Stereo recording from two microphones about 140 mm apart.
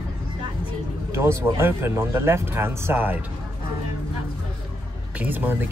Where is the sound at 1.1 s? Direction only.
20° right (ahead or behind).